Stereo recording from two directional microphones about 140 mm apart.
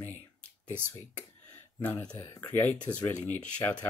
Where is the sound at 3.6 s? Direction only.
15° left (ahead or behind).